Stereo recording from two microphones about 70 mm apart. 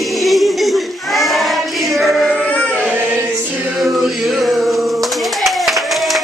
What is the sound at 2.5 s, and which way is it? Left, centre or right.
Music, centre.